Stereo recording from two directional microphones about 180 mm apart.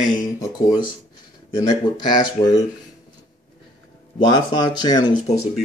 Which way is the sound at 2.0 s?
25° left (ahead or behind).